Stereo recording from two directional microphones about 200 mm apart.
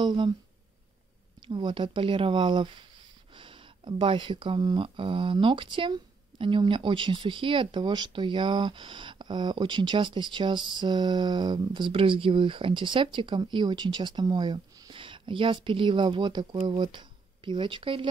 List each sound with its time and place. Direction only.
0.0 s speech: 20° right (ahead or behind)
1.5 s speech: 25° right (ahead or behind)